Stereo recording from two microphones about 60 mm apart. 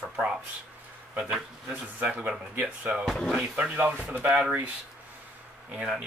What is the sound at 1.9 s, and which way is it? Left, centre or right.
Speech, right.